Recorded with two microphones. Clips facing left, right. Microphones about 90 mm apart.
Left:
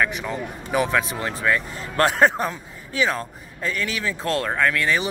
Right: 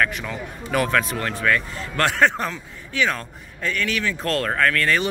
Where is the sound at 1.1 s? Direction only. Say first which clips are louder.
Right 1 dB; 20° left (ahead or behind).